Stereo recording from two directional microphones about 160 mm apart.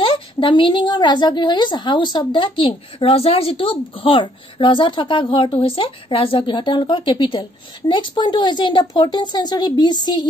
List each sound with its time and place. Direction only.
0.0 s a woman's voice: 30° left (ahead or behind)